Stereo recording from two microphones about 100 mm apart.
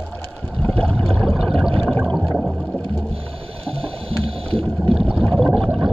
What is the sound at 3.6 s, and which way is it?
Ratchet, 70° right (ahead or behind).